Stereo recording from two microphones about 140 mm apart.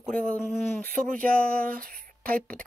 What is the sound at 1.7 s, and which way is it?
Speech, 90° right.